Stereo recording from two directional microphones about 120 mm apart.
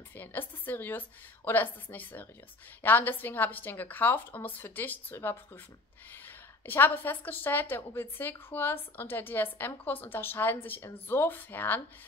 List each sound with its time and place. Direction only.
0.1 s a woman's voice: 15° left (ahead or behind)